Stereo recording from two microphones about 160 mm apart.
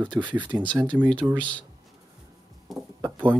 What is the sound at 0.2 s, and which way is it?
Speech, 15° right (ahead or behind).